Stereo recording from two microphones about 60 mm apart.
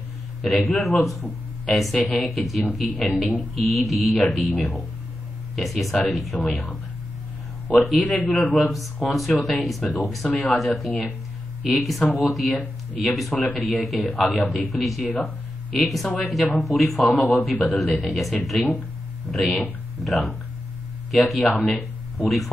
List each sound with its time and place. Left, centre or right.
0.4 s speech: centre
5.6 s speech: centre
7.8 s speech: centre
21.5 s speech: left
21.7 s speech: centre